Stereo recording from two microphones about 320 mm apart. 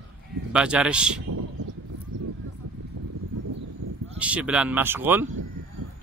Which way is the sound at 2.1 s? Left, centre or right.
Right.